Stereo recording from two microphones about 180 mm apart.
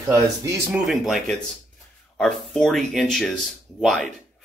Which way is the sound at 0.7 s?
Centre (ahead or behind).